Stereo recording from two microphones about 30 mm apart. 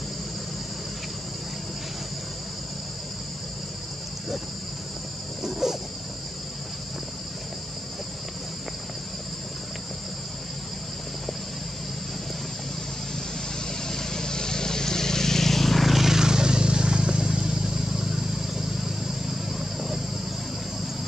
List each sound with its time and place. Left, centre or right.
5.4 s a sound: centre
13.8 s vehicle: centre
15.9 s vehicle: centre
16.2 s vehicle: right